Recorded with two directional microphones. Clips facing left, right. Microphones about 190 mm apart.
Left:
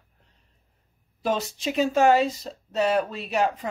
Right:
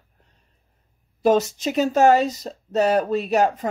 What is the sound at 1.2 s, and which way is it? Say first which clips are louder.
Speech: right 8 dB; 45° right (ahead or behind).